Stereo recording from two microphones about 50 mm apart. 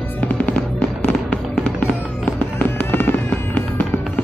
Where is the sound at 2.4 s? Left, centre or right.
Left.